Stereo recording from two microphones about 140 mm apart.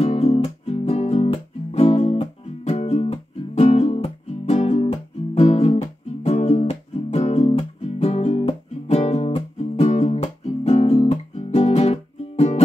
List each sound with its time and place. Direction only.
0.0 s music: 45° left (ahead or behind)